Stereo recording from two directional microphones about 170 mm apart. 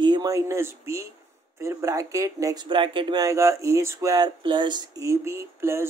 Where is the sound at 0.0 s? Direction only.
25° right (ahead or behind).